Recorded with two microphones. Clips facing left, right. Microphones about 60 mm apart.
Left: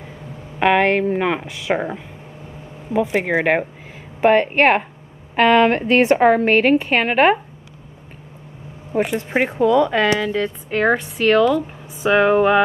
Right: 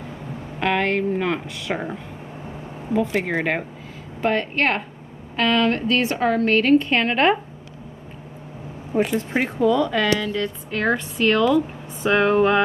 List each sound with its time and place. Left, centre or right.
0.6 s a woman's voice: left
3.0 s a woman's voice: centre
8.9 s a woman's voice: centre